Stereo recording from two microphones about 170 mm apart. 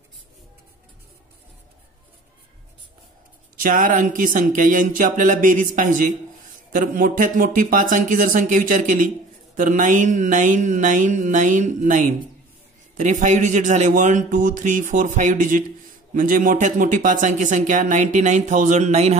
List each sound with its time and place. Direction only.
3.6 s a man's voice: 50° right (ahead or behind)